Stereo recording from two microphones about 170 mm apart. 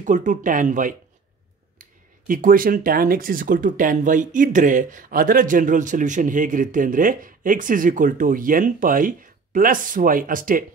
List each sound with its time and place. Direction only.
0.0 s speech: 50° right (ahead or behind)